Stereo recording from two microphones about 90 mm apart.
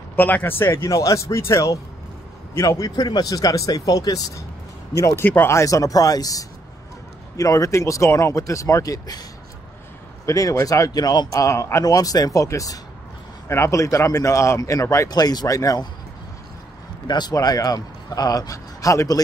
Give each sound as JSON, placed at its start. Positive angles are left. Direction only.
{"t": 0.1, "sound": "speech", "side_deg": 20}
{"t": 0.8, "sound": "speech", "side_deg": 40}
{"t": 5.0, "sound": "speech", "side_deg": 30}
{"t": 10.2, "sound": "speech", "side_deg": 35}
{"t": 17.1, "sound": "speech", "side_deg": 45}